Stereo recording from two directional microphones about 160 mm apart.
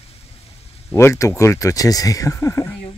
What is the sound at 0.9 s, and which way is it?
Speech, 15° left (ahead or behind).